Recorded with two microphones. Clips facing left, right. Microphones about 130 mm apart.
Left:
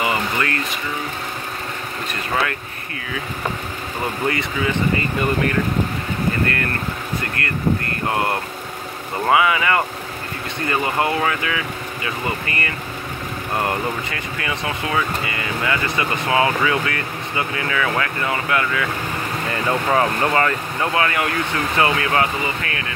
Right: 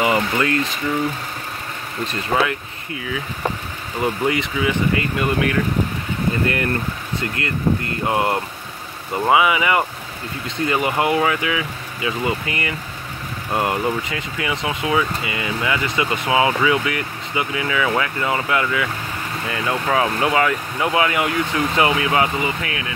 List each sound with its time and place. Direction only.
0.0 s a sound: 20° right (ahead or behind)
2.3 s speech: 20° right (ahead or behind)
4.0 s speech: 15° right (ahead or behind)
5.2 s speech: 5° right (ahead or behind)
6.4 s speech: 20° right (ahead or behind)
19.5 s speech: 5° right (ahead or behind)
20.9 s speech: 15° right (ahead or behind)